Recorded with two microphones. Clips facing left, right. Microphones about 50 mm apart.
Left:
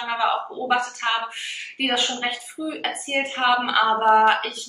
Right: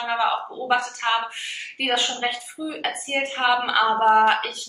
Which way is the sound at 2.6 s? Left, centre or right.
Centre.